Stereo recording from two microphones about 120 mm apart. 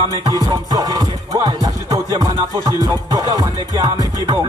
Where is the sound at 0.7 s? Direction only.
30° right (ahead or behind).